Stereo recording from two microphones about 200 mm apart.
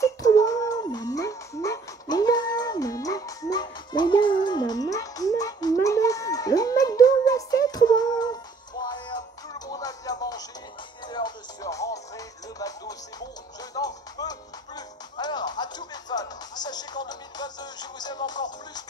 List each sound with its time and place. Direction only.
0.0 s music: 15° left (ahead or behind)